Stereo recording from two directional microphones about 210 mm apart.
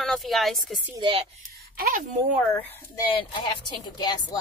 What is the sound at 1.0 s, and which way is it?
Speech, 25° right (ahead or behind).